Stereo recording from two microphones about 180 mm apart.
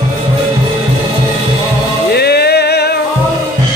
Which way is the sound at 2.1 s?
65° left (ahead or behind).